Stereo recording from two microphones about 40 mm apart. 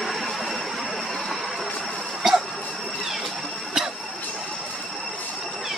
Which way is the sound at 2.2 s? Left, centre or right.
Centre.